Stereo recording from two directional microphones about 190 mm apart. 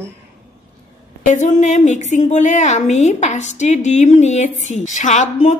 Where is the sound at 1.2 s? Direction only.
40° left (ahead or behind).